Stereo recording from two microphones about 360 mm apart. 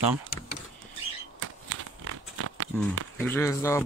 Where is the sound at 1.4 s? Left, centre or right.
Right.